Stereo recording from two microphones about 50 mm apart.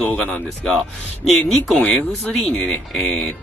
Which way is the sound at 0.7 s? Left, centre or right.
Centre.